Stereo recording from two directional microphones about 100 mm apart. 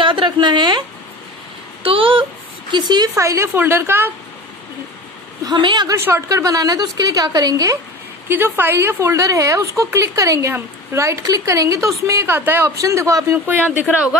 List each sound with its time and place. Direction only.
0.0 s a sound: 55° right (ahead or behind)
1.8 s a sound: 65° right (ahead or behind)
2.7 s a woman's voice: 45° right (ahead or behind)
3.2 s speech: 30° right (ahead or behind)
5.4 s a woman's voice: 45° right (ahead or behind)
5.9 s speech: 25° right (ahead or behind)
6.2 s speech: 35° right (ahead or behind)
8.3 s speech: 20° right (ahead or behind)
12.8 s speech: 30° right (ahead or behind); by 14.1 s 10° right (ahead or behind)